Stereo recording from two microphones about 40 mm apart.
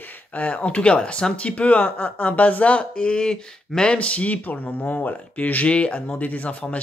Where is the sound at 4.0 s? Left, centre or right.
Left.